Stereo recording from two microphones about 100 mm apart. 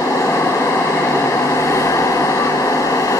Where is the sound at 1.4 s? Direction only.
30° left (ahead or behind).